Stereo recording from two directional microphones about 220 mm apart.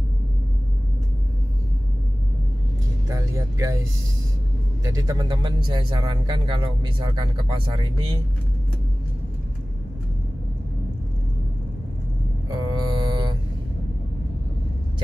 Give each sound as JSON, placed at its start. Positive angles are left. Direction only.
{"t": 3.1, "sound": "speech", "side_deg": -15}
{"t": 4.8, "sound": "speech", "side_deg": -15}
{"t": 12.5, "sound": "mantra", "side_deg": -20}